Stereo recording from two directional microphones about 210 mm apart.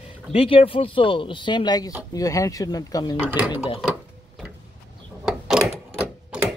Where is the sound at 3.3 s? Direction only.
5° right (ahead or behind).